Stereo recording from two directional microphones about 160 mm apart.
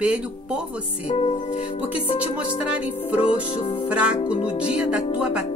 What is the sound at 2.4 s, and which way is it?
Speech, 10° right (ahead or behind).